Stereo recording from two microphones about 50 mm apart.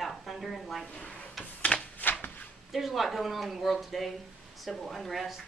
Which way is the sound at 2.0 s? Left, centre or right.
Left.